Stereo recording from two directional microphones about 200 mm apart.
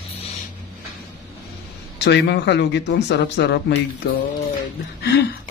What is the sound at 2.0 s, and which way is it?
Speech, 60° left (ahead or behind).